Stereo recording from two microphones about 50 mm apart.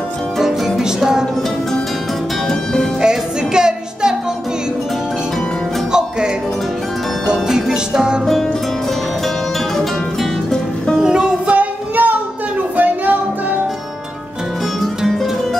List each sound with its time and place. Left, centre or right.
0.4 s music: centre
3.0 s music: centre
5.9 s music: centre
11.0 s music: centre
11.4 s music: right